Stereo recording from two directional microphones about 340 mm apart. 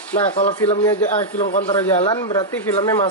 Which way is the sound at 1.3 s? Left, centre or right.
Left.